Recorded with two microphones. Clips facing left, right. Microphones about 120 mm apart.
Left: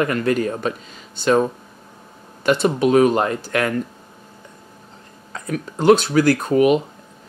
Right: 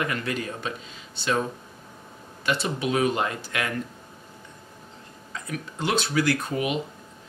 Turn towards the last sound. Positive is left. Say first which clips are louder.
# left 11 dB
turn(degrees=50)  # may be behind; listen again after turning